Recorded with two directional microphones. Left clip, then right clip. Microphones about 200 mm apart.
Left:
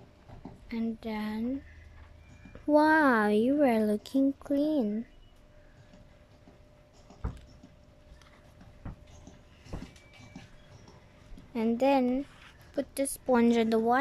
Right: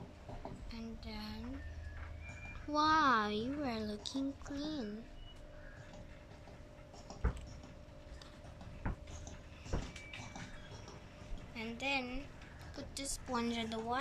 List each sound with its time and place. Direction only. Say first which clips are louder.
0.7 s a woman's voice: left 13 dB; 45° left (ahead or behind)
2.7 s speech: left 8 dB; 40° left (ahead or behind)
11.5 s a woman's voice: left 12 dB; 45° left (ahead or behind)